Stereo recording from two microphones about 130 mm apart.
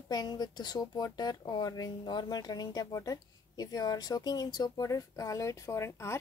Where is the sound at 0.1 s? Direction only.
30° left (ahead or behind).